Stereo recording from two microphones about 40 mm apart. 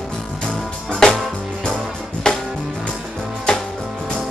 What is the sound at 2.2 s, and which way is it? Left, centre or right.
Music, centre.